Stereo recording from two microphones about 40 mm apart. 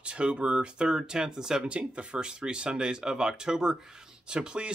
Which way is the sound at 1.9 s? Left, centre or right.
Right.